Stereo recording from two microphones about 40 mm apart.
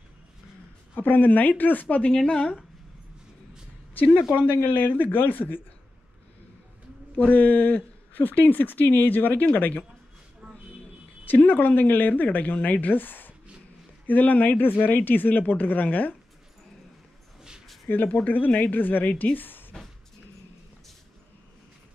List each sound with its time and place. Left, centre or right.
0.9 s speech: left
2.2 s speech: left
3.9 s a sound: left
4.7 s speech: left
7.2 s speech: left
11.2 s speech: left
17.8 s speech: left